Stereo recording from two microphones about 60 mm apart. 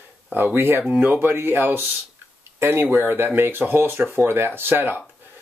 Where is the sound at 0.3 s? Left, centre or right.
Right.